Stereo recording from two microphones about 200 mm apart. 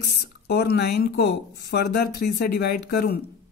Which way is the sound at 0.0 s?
55° left (ahead or behind).